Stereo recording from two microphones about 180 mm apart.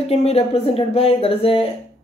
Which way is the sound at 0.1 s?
35° left (ahead or behind).